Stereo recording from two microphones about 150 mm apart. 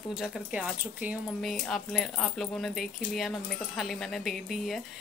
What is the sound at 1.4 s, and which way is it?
A woman's voice, 5° left (ahead or behind).